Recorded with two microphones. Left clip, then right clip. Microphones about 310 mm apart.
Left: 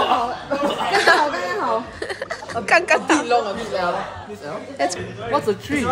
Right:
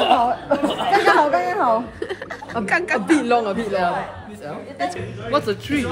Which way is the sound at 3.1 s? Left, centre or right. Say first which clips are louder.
Even; right.